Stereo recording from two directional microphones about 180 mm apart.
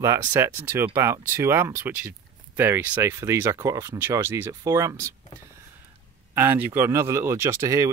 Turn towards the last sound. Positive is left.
turn(degrees=-15)  # may be behind; listen again after turning